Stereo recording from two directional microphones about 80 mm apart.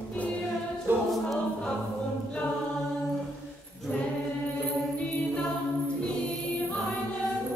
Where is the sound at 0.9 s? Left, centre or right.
Right.